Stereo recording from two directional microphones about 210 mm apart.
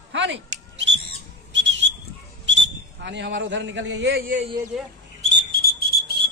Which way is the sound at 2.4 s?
60° right (ahead or behind).